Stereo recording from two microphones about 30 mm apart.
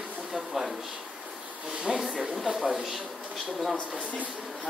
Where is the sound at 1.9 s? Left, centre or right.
Right.